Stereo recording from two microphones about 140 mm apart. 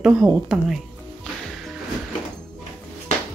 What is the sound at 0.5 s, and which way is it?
Speech, centre (ahead or behind).